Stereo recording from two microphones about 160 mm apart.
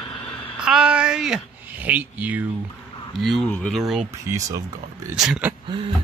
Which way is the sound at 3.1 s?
Centre (ahead or behind).